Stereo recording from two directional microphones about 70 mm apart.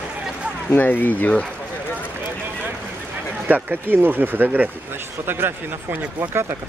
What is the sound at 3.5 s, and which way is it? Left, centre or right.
Speech, right.